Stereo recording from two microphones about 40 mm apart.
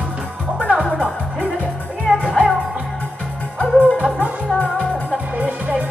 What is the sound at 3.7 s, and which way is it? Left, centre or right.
Music, left.